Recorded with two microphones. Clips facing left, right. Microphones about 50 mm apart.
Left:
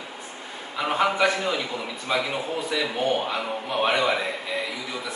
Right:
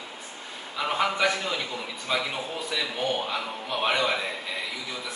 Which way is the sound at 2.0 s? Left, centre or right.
Centre.